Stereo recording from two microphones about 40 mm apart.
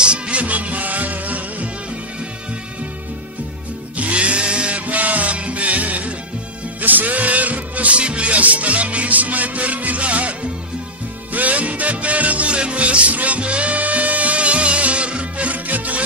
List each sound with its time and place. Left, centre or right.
0.0 s music: right
3.9 s music: right
11.3 s music: right